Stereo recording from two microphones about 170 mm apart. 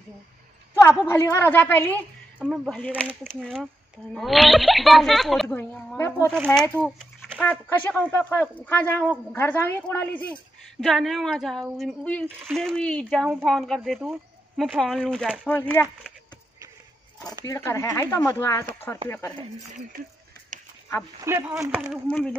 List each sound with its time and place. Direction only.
0.7 s a woman's voice: 15° left (ahead or behind)
2.3 s a woman's voice: 5° right (ahead or behind)
5.6 s a woman's voice: 10° left (ahead or behind)
6.3 s a woman's voice: 5° left (ahead or behind)
15.4 s a woman's voice: 10° left (ahead or behind)
17.5 s a woman's voice: 15° left (ahead or behind)
21.2 s speech: 15° right (ahead or behind)
22.0 s a woman's voice: 5° left (ahead or behind)